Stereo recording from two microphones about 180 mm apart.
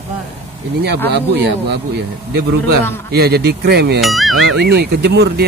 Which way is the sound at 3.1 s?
60° right (ahead or behind).